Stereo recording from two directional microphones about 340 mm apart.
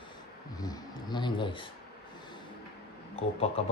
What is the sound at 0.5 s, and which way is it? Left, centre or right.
Music, centre.